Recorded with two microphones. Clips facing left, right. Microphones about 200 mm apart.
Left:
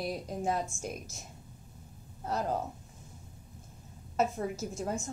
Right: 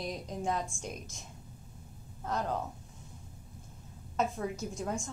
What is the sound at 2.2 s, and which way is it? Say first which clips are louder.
Speech: left 2 dB; 35° left (ahead or behind).